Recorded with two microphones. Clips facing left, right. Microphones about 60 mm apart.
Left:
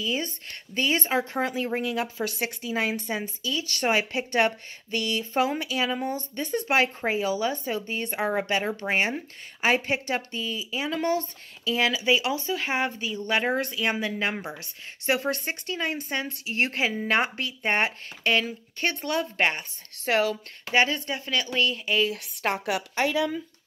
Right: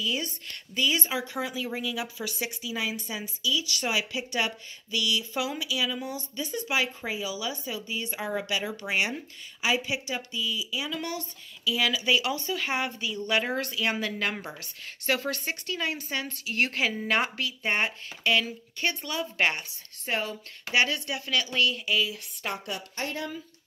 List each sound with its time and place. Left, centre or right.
0.0 s speech: left
9.7 s speech: left
19.3 s speech: left
20.1 s speech: left
20.7 s speech: left
22.1 s speech: left